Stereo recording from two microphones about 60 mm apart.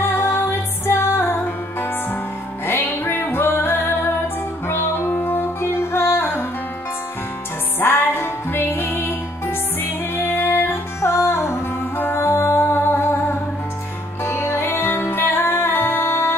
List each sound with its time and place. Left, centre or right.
0.0 s music: left
5.6 s music: left
7.8 s music: left